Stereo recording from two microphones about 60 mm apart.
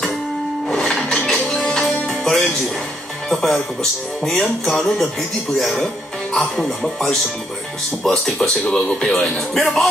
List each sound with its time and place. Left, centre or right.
0.7 s music: centre
0.9 s music: centre
3.3 s speech: centre